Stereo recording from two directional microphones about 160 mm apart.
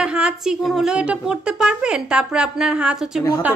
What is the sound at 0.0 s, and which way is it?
Speech, 5° right (ahead or behind).